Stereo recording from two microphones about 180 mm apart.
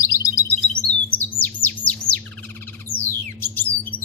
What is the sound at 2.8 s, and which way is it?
Music, 10° left (ahead or behind).